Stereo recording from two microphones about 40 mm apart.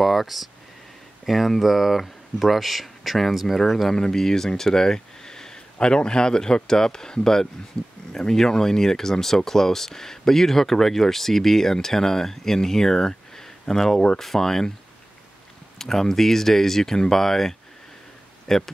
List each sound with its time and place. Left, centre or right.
0.0 s a sound: centre
1.2 s speech: centre
3.9 s speech: centre
15.8 s speech: centre